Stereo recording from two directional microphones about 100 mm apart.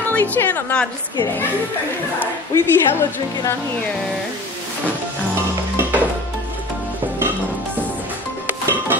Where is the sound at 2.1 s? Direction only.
20° left (ahead or behind).